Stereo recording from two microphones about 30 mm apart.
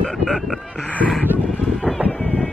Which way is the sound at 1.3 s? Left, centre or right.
Right.